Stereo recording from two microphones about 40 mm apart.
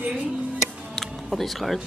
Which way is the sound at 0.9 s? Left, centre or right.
Centre.